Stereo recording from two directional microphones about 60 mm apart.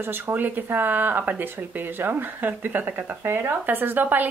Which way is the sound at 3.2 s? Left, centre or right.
Right.